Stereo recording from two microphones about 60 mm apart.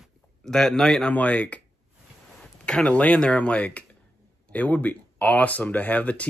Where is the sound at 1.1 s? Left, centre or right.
Left.